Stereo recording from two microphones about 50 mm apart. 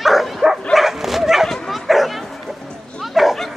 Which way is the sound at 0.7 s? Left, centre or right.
Centre.